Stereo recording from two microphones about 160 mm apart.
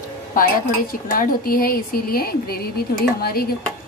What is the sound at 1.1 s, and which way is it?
A woman's voice, 65° left (ahead or behind).